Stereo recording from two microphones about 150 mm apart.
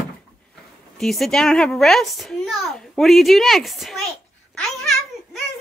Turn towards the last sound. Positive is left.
turn(degrees=5)  # may be behind; listen again after turning